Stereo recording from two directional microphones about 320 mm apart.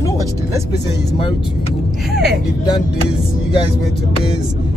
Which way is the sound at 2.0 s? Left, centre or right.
Centre.